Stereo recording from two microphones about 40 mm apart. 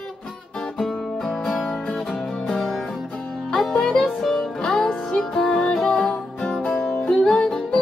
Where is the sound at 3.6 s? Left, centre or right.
Centre.